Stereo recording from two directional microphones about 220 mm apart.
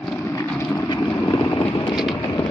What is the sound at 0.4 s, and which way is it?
Vehicle, 10° left (ahead or behind).